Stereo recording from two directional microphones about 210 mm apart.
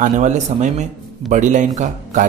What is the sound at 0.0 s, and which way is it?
Speech, 35° right (ahead or behind).